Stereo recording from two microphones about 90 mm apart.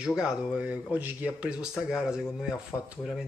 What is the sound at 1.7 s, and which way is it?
Speech, 5° right (ahead or behind).